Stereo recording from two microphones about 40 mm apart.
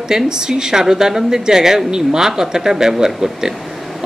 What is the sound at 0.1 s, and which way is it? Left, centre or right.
Speech, centre.